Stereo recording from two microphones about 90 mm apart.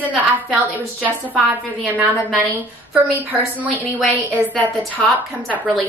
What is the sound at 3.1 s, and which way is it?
A woman's voice, 20° right (ahead or behind).